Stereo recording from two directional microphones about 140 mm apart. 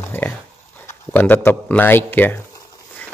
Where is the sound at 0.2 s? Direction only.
15° left (ahead or behind).